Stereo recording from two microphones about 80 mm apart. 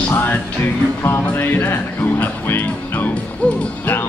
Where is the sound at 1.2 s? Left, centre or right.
Left.